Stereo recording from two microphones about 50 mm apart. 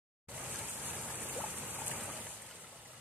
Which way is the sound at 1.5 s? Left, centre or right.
Right.